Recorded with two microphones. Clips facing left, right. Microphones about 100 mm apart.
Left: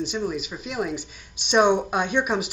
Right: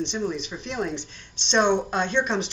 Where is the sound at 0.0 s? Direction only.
5° left (ahead or behind).